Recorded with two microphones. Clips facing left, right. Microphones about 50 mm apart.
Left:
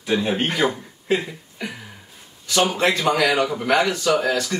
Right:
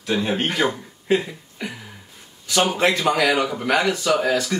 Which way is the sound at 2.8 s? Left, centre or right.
Centre.